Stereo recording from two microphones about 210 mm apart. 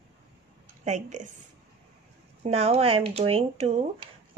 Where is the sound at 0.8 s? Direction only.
35° right (ahead or behind).